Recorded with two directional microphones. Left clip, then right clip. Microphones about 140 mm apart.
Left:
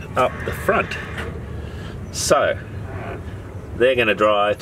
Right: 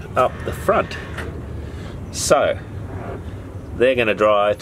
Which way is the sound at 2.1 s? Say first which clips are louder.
Right 1 dB; 5° right (ahead or behind).